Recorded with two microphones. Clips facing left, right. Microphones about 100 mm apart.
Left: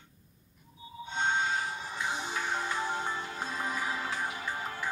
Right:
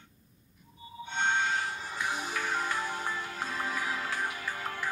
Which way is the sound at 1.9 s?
25° left (ahead or behind).